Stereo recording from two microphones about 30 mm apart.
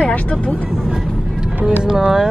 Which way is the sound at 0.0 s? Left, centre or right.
Left.